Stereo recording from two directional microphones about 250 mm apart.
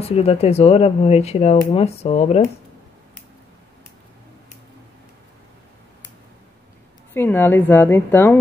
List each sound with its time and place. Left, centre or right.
0.1 s speech: left
7.2 s a woman's voice: centre